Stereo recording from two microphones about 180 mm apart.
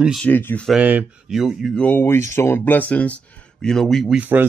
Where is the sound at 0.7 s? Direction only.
5° right (ahead or behind).